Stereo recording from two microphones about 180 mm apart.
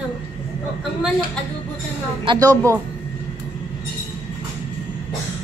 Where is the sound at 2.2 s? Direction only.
25° right (ahead or behind).